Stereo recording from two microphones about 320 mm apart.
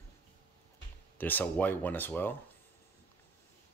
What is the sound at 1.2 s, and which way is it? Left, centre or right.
Speech, centre.